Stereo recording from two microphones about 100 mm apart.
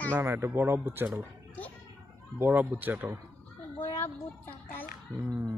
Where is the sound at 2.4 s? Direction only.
20° right (ahead or behind).